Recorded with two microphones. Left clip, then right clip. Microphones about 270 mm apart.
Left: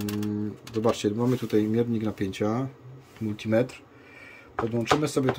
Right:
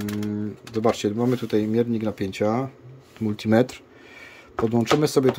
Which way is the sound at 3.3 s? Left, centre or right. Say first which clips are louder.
Right 4 dB; right.